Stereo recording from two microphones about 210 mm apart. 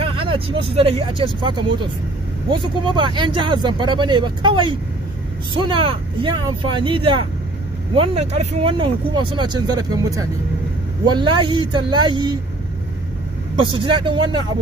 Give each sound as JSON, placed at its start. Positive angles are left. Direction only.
{"t": 0.0, "sound": "speech", "side_deg": -25}
{"t": 2.9, "sound": "speech", "side_deg": -20}
{"t": 13.6, "sound": "speech", "side_deg": -25}